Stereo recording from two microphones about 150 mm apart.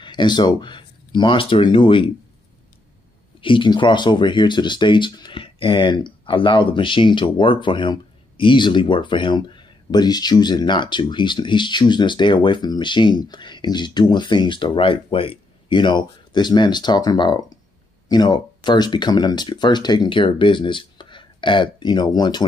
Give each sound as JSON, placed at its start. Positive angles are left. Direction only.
{"t": 0.0, "sound": "speech", "side_deg": 30}
{"t": 3.3, "sound": "speech", "side_deg": 35}